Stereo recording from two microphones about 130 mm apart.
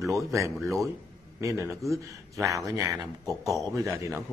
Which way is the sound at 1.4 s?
25° right (ahead or behind).